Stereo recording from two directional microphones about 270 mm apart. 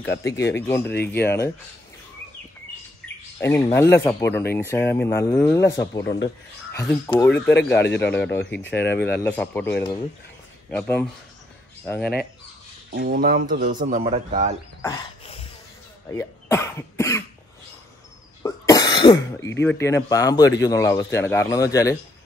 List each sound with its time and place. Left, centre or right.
0.0 s speech: centre
3.3 s speech: centre
12.9 s a man's voice: right
14.8 s a sound: centre
16.1 s speech: centre
18.4 s speech: centre